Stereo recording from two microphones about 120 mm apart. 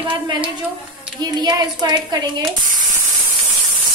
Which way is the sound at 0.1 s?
45° right (ahead or behind).